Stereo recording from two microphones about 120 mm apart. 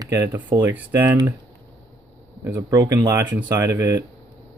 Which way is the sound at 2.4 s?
25° right (ahead or behind).